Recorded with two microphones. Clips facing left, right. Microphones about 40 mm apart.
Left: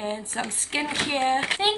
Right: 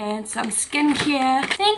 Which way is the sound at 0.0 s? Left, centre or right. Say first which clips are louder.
Right 4 dB; centre.